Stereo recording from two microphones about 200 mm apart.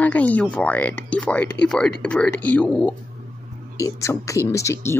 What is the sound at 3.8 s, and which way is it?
Speech, 15° left (ahead or behind).